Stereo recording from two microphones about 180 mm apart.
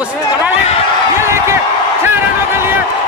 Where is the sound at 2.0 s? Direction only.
15° right (ahead or behind).